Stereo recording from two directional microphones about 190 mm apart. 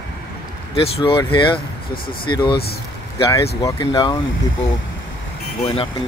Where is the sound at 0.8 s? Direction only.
30° left (ahead or behind).